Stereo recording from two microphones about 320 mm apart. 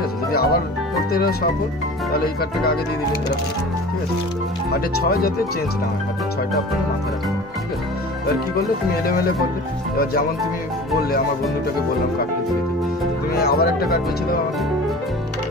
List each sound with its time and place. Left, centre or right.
0.3 s music: left
2.1 s speech: left
4.7 s speech: left
13.3 s speech: left